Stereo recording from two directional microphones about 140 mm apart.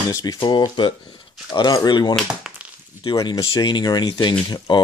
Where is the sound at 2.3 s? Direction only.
5° right (ahead or behind).